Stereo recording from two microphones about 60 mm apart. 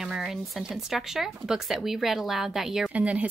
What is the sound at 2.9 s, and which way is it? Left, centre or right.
Speech, right.